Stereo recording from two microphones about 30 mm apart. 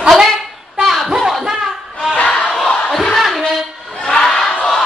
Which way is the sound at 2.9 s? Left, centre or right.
Centre.